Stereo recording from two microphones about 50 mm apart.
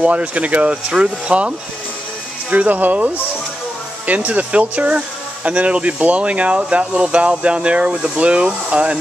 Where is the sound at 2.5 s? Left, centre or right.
Right.